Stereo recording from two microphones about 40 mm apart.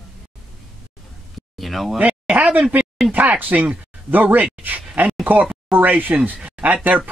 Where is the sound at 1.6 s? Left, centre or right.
Centre.